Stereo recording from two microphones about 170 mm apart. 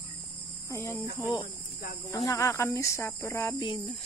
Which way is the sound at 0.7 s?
20° left (ahead or behind).